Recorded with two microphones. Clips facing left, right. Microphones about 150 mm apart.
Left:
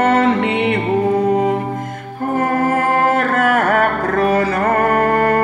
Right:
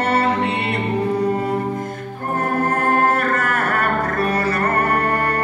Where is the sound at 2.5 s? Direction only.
90° left.